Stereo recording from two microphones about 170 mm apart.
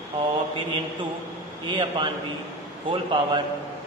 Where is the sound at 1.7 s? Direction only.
30° right (ahead or behind).